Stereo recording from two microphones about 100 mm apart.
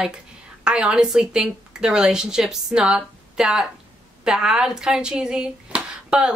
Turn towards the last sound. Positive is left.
turn(degrees=-10)  # may be behind; listen again after turning